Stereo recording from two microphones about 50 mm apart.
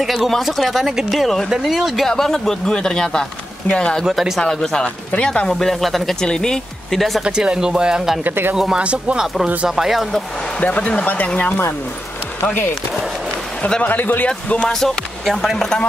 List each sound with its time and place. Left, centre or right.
0.0 s speech: centre
2.0 s speech: centre
4.8 s speech: left
5.5 s speech: centre
6.2 s speech: centre
7.0 s speech: centre
7.2 s speech: centre
8.2 s speech: right
8.5 s speech: centre
9.7 s speech: centre
10.6 s speech: left
13.8 s speech: left
14.2 s speech: left
14.7 s speech: centre